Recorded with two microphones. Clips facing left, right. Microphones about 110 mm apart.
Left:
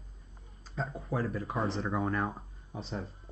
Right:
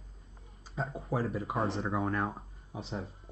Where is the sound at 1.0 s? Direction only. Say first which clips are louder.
Right 1 dB; 25° right (ahead or behind).